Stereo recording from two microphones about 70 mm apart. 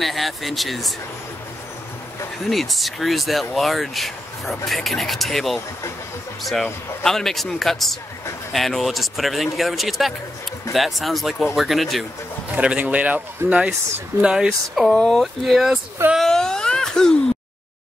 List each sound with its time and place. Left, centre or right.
0.0 s speech: centre
2.4 s speech: centre
12.5 s a man's voice: centre
15.0 s speech: centre
16.2 s a sound: centre